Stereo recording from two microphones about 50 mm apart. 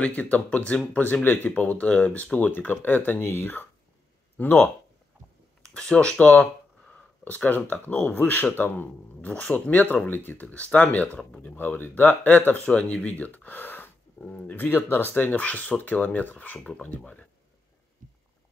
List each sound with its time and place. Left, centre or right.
0.0 s speech: left
5.6 s speech: centre; by 8.9 s left
9.4 s speech: left
10.0 s speech: left
11.4 s speech: left
12.6 s speech: left
14.2 s speech: left
14.6 s speech: left
15.3 s speech: left